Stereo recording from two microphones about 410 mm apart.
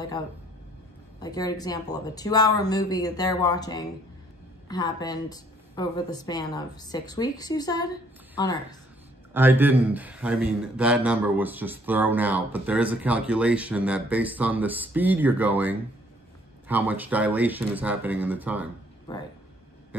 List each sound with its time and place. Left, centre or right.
1.2 s a woman's voice: centre
9.3 s speech: centre